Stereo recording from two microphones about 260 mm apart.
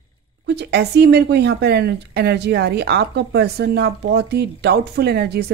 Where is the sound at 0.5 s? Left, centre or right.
Right.